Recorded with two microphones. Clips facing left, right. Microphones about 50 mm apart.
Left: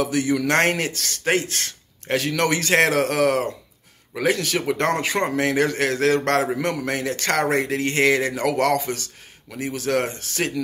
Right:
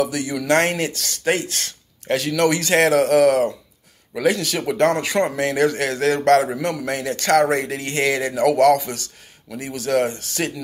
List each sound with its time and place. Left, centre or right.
0.0 s speech: left